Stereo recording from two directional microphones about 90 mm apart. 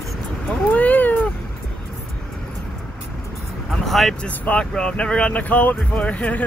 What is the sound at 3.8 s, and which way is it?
Vehicle, 5° left (ahead or behind).